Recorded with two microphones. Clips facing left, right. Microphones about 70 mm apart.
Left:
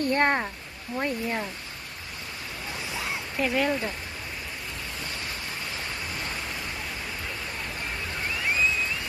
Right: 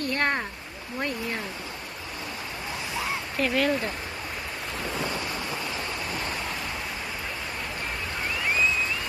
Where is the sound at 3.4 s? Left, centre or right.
Centre.